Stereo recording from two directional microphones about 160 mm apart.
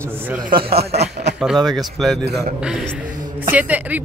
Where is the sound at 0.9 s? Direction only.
45° right (ahead or behind).